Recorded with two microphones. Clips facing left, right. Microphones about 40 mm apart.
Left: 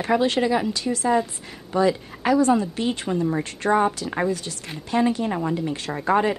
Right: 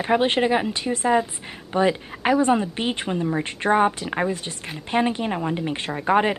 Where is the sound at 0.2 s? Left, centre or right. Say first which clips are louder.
Right 1 dB; right.